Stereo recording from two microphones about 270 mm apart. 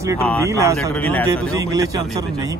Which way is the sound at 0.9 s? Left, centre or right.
Centre.